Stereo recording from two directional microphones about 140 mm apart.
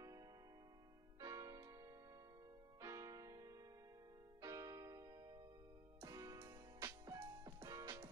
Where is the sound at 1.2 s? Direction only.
25° right (ahead or behind).